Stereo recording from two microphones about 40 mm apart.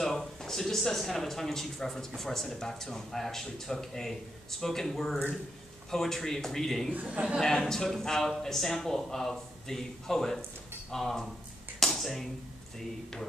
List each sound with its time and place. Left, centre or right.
0.0 s speech: centre
7.1 s a man's voice: right
7.3 s speech: centre
11.8 s a sound: centre